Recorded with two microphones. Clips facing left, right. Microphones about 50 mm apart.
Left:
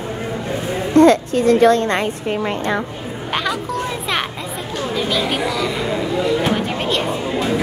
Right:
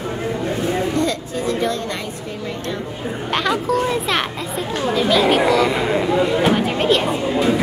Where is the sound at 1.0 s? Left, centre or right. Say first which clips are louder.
Left 10 dB; left.